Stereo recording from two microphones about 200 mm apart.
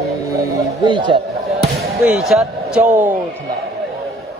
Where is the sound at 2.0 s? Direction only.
Centre (ahead or behind).